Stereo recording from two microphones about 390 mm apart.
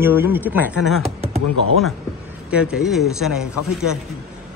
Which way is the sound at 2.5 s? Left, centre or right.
Centre.